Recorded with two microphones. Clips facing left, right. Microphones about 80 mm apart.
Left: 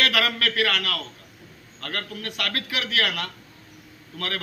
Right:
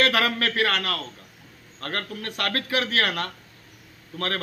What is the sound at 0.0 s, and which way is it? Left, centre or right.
A man's voice, right.